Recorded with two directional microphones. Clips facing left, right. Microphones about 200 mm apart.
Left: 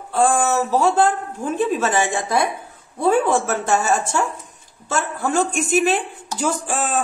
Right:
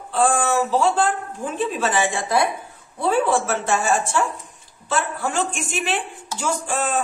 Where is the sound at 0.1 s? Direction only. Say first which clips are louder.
Left 2 dB; 45° left (ahead or behind).